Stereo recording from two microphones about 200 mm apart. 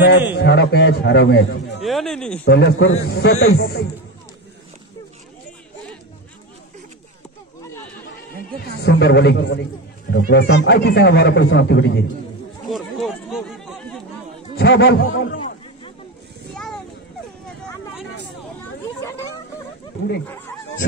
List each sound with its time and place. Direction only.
0.4 s speech: 55° left (ahead or behind)
1.8 s speech: centre (ahead or behind)
2.4 s speech: 60° left (ahead or behind)
3.1 s speech: 85° left
3.5 s a man's voice: 55° left (ahead or behind)
8.8 s speech: 60° left (ahead or behind)
12.6 s chatter: centre (ahead or behind)
14.6 s speech: 55° left (ahead or behind)